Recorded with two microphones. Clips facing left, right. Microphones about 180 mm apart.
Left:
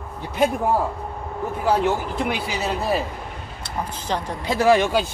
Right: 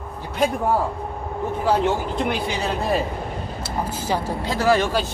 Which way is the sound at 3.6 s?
10° right (ahead or behind).